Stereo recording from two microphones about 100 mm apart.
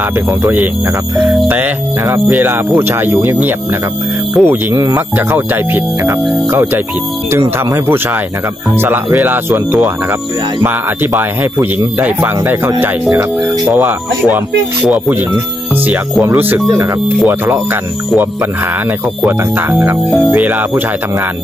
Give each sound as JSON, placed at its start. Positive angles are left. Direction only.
{"t": 0.4, "sound": "speech", "side_deg": -20}
{"t": 1.1, "sound": "music", "side_deg": -5}
{"t": 2.0, "sound": "speech", "side_deg": -35}
{"t": 4.4, "sound": "music", "side_deg": 0}
{"t": 7.3, "sound": "speech", "side_deg": -25}
{"t": 12.0, "sound": "speech", "side_deg": -15}
{"t": 13.7, "sound": "speech", "side_deg": -20}
{"t": 16.3, "sound": "speech", "side_deg": -20}
{"t": 20.1, "sound": "music", "side_deg": 0}
{"t": 20.3, "sound": "speech", "side_deg": -15}